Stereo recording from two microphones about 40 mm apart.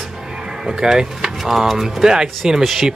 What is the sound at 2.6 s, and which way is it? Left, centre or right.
Speech, centre.